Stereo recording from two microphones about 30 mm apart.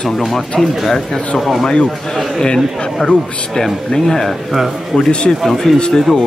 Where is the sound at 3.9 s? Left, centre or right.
Centre.